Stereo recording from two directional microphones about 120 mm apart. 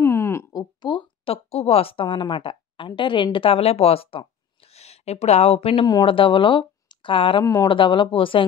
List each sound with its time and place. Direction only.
0.0 s a sound: 25° left (ahead or behind); by 2.9 s 45° left (ahead or behind)
3.0 s speech: 40° left (ahead or behind)
5.9 s speech: 40° left (ahead or behind)